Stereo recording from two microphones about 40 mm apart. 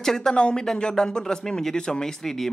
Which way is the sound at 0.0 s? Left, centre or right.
Centre.